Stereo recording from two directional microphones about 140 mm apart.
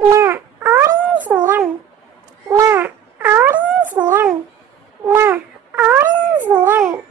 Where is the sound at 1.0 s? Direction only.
10° right (ahead or behind).